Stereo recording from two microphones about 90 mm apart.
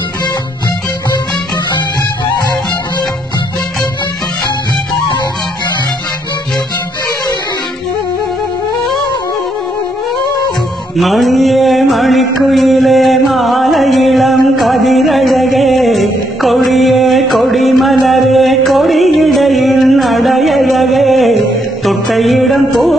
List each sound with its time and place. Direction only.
11.0 s mantra: centre (ahead or behind)